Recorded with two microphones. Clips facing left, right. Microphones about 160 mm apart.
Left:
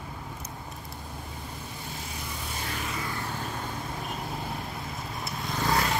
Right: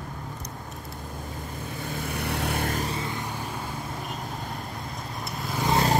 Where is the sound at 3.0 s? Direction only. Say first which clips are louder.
Right 2 dB; 20° right (ahead or behind).